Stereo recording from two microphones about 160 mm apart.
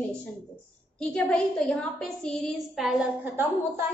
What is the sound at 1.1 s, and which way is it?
A woman's voice, 5° left (ahead or behind).